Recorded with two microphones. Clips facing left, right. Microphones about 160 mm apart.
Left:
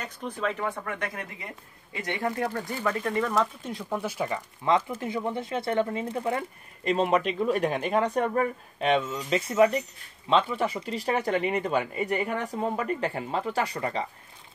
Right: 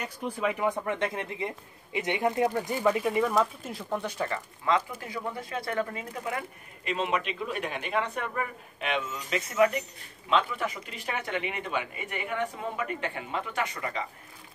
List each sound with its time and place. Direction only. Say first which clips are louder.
0.0 s speech: right 1 dB; 10° right (ahead or behind); by 4.4 s 10° left (ahead or behind)
4.7 s speech: left 3 dB; 25° left (ahead or behind)